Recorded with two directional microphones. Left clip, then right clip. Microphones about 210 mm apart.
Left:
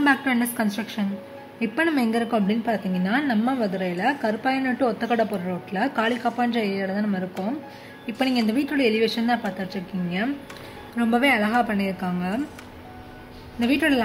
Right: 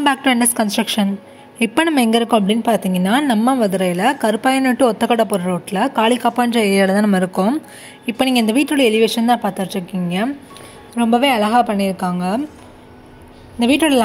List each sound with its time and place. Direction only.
0.0 s a woman's voice: 40° right (ahead or behind)
8.1 s a woman's voice: 40° right (ahead or behind)
11.0 s a woman's voice: 25° right (ahead or behind)
13.6 s a woman's voice: 35° right (ahead or behind)